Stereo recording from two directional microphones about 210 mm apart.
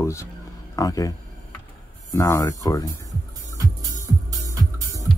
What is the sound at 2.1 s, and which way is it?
Speech, 15° left (ahead or behind).